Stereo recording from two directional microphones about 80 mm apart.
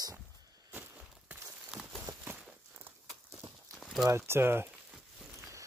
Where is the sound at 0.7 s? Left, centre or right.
Right.